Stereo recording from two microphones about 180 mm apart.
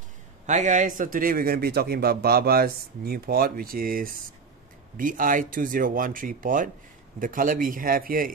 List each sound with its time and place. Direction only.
0.5 s a man's voice: 45° right (ahead or behind)